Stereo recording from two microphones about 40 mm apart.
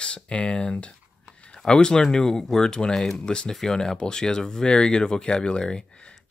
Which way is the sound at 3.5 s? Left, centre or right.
Centre.